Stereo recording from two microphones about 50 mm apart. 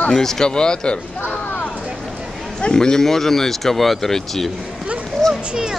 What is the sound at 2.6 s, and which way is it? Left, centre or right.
Speech, centre.